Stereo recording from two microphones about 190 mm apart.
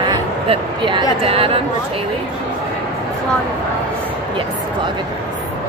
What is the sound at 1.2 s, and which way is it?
Chatter, 30° right (ahead or behind).